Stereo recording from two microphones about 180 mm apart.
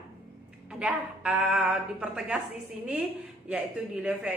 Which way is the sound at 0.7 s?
5° right (ahead or behind).